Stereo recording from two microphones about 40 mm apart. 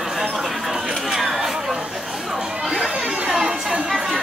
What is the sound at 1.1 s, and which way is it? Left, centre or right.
Chatter, centre.